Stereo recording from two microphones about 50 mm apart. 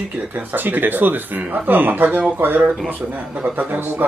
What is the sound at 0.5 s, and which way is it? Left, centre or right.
Speech, right.